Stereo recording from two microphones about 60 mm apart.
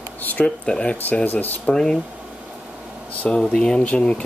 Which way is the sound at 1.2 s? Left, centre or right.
Left.